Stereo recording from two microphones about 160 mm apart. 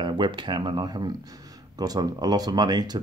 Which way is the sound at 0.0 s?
30° right (ahead or behind).